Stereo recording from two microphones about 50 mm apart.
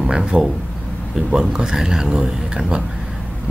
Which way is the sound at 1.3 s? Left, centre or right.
Centre.